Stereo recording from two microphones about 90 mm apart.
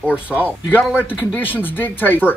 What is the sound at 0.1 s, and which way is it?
Speech, 15° right (ahead or behind).